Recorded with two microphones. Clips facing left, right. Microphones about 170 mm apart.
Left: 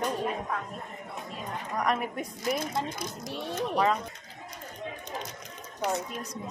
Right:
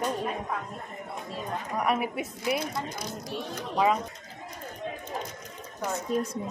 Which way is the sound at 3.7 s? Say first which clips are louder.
Right 2 dB; 10° right (ahead or behind).